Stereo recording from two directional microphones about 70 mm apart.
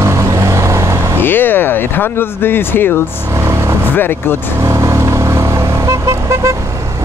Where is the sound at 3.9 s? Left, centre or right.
Left.